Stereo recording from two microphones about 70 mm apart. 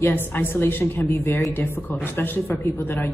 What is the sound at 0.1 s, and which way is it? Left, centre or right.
A woman's voice, left.